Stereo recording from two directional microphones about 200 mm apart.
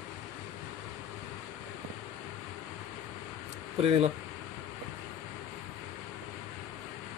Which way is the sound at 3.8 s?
30° right (ahead or behind).